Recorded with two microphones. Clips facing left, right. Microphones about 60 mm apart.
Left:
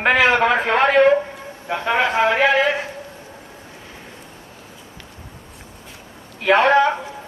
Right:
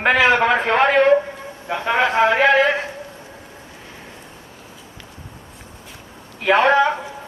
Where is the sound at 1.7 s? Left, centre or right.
Centre.